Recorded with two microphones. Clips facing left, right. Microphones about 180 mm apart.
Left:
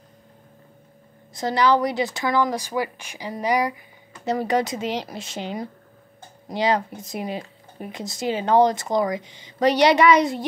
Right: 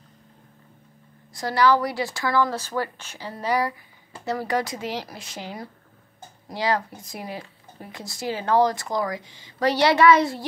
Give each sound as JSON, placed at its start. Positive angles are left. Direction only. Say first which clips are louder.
{"t": 1.3, "sound": "a woman's voice", "louder": "left 1 dB", "side_deg": 20}